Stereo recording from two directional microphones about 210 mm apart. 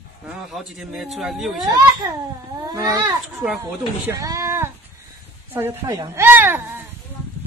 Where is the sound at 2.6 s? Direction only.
20° right (ahead or behind).